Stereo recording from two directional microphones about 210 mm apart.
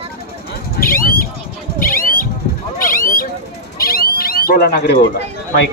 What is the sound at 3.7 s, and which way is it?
Cat, 45° left (ahead or behind).